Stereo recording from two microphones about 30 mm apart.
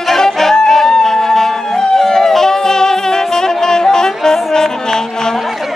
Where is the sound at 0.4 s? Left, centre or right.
Centre.